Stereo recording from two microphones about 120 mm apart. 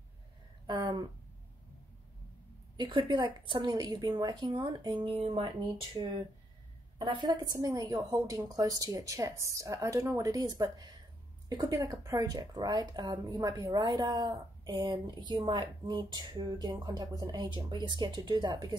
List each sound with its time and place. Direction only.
0.7 s a sound: 35° right (ahead or behind)
2.8 s a woman's voice: 40° right (ahead or behind)
7.1 s a woman's voice: 35° right (ahead or behind)